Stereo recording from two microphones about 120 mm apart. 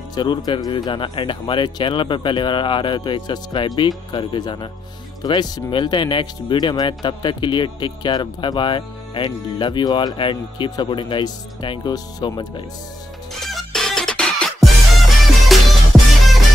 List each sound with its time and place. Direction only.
0.1 s speech: 35° left (ahead or behind)
13.5 s music: 5° left (ahead or behind)